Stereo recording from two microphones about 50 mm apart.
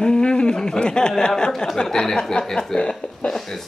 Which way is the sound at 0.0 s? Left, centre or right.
Centre.